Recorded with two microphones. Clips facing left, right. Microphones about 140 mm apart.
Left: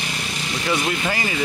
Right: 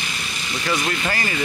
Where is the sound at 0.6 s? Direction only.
15° left (ahead or behind).